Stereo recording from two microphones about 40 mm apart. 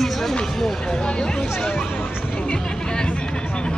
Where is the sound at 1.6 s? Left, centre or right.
Left.